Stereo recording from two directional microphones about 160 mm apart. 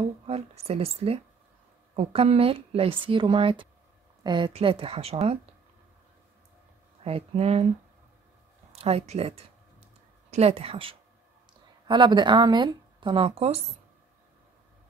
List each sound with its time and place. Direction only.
0.3 s speech: 40° right (ahead or behind)
7.0 s speech: 40° right (ahead or behind)
8.7 s speech: 40° right (ahead or behind)